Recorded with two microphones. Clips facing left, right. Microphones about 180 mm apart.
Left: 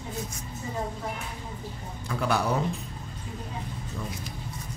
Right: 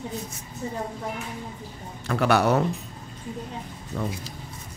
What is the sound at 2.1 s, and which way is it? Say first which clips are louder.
Speech: right 6 dB; 70° right (ahead or behind).